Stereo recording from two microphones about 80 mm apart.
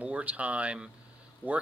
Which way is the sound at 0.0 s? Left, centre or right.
Centre.